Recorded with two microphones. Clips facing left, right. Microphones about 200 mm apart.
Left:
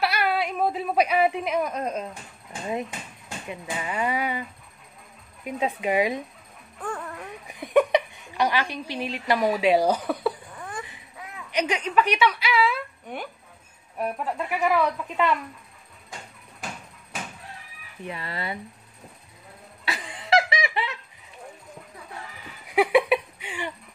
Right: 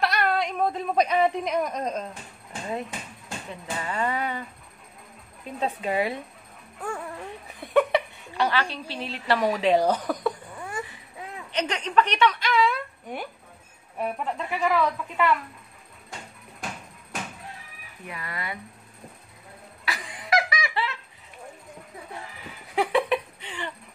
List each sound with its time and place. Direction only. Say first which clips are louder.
0.0 s a woman's voice: even; 5° left (ahead or behind)
3.4 s speech: left 2 dB; 15° left (ahead or behind)
6.8 s dog: even; 10° right (ahead or behind)
7.4 s a woman's voice: left 2 dB; 15° left (ahead or behind)
11.5 s a woman's voice: left 1 dB; 10° left (ahead or behind)
18.0 s speech: left 3 dB; 30° left (ahead or behind)
19.8 s laughter: left 1 dB; 25° left (ahead or behind)
22.8 s a sound: left 4 dB; 10° left (ahead or behind)